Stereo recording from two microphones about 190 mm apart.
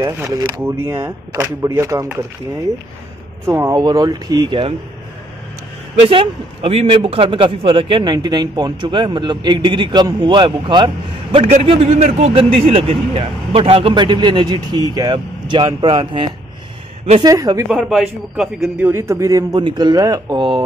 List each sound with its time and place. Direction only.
0.0 s a man's voice: 20° right (ahead or behind)
3.4 s a man's voice: 15° right (ahead or behind)
6.0 s a man's voice: 30° right (ahead or behind)
17.6 s a man's voice: centre (ahead or behind); by 20.6 s 25° right (ahead or behind)